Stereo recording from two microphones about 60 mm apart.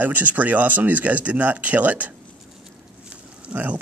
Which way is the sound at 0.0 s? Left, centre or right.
Right.